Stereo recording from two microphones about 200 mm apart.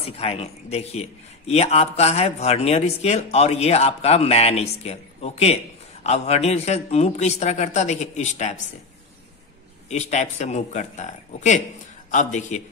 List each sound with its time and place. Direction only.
0.0 s speech: 30° left (ahead or behind)
9.8 s speech: 35° left (ahead or behind)